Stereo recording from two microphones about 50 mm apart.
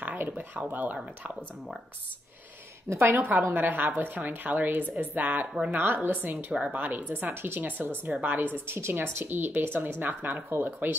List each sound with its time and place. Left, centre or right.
0.0 s a sound: right
0.4 s a woman's voice: right
2.9 s a woman's voice: right
3.2 s a woman's voice: right
5.7 s a woman's voice: right
6.5 s speech: right
6.8 s a woman's voice: right
8.1 s a woman's voice: right
8.5 s speech: right